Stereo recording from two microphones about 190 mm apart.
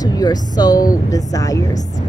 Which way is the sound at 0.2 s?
20° left (ahead or behind).